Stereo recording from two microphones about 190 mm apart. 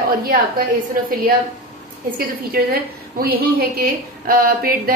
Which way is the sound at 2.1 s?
50° right (ahead or behind).